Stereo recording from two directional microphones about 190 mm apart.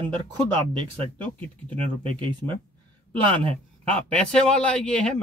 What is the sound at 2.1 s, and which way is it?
Speech, 25° right (ahead or behind).